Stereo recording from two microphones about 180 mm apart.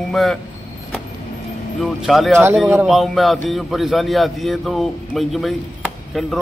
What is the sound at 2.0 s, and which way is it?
A man's voice, centre (ahead or behind).